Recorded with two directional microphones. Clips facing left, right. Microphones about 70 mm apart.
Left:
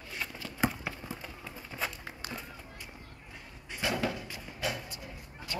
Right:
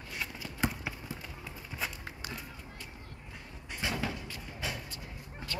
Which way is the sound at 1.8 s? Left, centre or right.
Centre.